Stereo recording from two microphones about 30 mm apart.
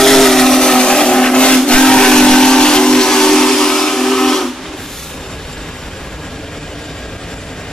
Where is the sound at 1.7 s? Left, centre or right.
Left; by 4.5 s centre.